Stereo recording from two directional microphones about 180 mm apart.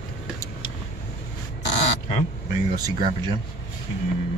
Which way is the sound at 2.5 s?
25° right (ahead or behind).